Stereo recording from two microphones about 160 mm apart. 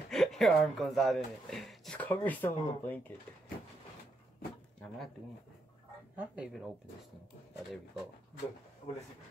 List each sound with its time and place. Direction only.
0.1 s speech: centre (ahead or behind)
6.1 s speech: 5° right (ahead or behind)